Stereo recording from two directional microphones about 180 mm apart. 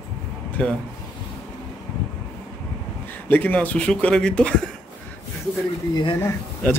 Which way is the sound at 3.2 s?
10° left (ahead or behind).